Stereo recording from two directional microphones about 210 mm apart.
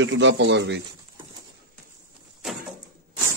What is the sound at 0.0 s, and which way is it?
Speech, 60° right (ahead or behind).